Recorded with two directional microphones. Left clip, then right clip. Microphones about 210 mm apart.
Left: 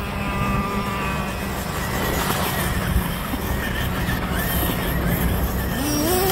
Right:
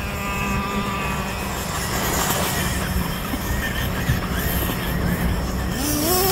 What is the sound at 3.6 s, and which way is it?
Neigh, 5° left (ahead or behind).